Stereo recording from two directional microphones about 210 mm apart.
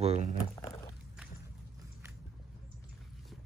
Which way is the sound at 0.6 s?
15° left (ahead or behind).